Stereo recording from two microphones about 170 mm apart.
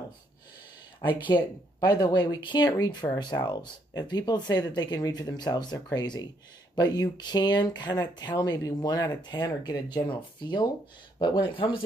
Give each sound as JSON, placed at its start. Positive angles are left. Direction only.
{"t": 1.2, "sound": "speech", "side_deg": 25}